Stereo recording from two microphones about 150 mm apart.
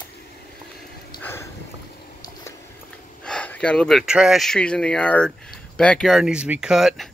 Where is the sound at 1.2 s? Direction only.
15° left (ahead or behind).